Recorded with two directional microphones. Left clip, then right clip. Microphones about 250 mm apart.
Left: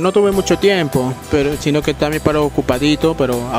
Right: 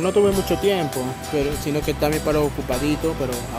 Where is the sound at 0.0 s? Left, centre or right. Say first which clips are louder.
Left 5 dB; left.